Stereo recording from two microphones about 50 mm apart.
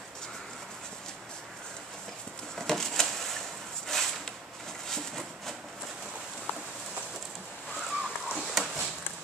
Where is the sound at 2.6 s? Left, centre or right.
Centre.